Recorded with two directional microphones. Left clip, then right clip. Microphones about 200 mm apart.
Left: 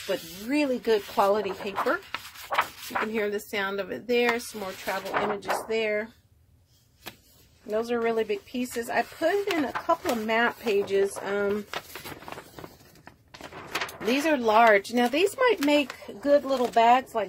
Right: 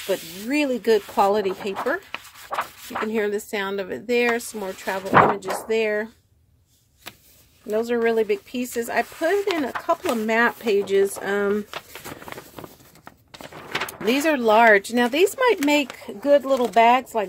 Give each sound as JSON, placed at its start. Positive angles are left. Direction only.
{"t": 0.0, "sound": "speech", "side_deg": -40}
{"t": 2.5, "sound": "a sound", "side_deg": 0}
{"t": 3.1, "sound": "speech", "side_deg": -35}
{"t": 7.6, "sound": "speech", "side_deg": -40}
{"t": 12.5, "sound": "a sound", "side_deg": -50}
{"t": 14.0, "sound": "speech", "side_deg": -40}